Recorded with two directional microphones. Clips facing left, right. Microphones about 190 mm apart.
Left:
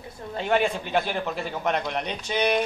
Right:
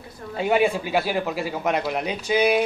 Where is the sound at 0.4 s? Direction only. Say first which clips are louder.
Right 3 dB; 5° right (ahead or behind).